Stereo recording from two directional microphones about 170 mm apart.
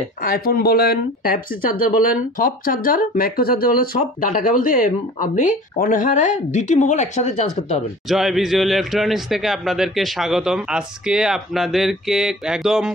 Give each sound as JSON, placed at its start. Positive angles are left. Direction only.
{"t": 0.2, "sound": "speech", "side_deg": 60}
{"t": 8.1, "sound": "a man's voice", "side_deg": 0}